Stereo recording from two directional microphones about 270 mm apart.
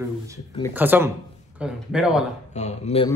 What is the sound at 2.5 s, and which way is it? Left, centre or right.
Speech, left.